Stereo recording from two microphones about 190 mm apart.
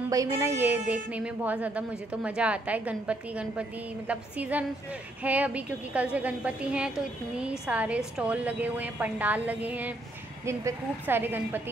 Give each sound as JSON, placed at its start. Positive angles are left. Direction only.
{"t": 0.1, "sound": "a woman's voice", "side_deg": -15}